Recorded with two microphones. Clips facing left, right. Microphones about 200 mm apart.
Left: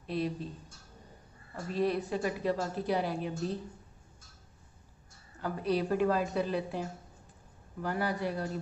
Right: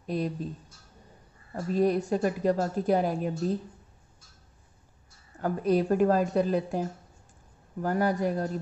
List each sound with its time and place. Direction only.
0.0 s speech: 45° right (ahead or behind)
1.5 s a woman's voice: 45° right (ahead or behind)
5.4 s a woman's voice: 45° right (ahead or behind)